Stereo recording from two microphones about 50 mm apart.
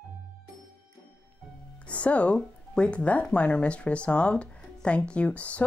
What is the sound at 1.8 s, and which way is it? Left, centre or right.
Speech, left.